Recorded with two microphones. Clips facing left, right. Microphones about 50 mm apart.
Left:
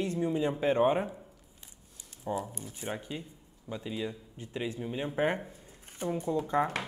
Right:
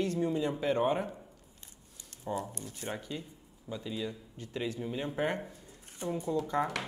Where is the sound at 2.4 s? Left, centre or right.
Centre.